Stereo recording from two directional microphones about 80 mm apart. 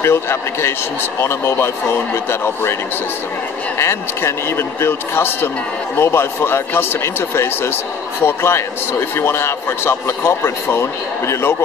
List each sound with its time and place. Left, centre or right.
0.0 s a man's voice: left
3.7 s a man's voice: left